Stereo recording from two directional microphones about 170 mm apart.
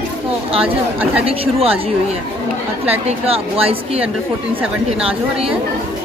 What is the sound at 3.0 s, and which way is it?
Speech, 35° right (ahead or behind).